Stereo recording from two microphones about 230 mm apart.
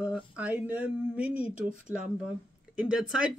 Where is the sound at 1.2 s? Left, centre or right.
Left.